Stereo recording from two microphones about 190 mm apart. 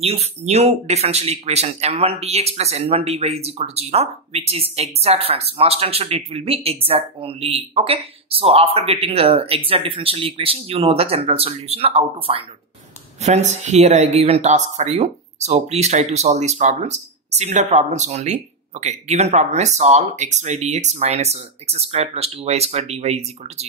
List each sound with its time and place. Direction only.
0.0 s speech: 30° right (ahead or behind)